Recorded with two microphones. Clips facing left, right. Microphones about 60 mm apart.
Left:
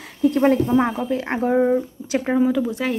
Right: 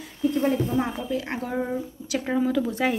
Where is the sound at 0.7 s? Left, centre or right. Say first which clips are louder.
Left 6 dB; left.